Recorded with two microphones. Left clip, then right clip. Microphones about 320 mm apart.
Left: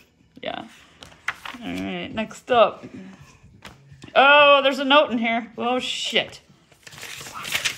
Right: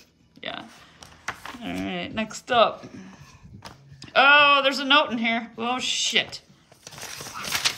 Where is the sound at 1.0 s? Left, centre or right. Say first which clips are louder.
Left 4 dB; right.